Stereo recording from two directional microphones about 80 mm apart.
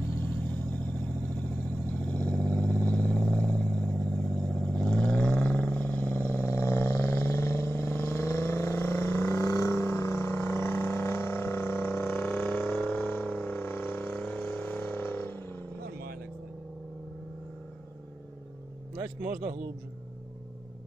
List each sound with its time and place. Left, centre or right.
0.2 s vehicle: centre
9.4 s vehicle: left
12.1 s a sound: centre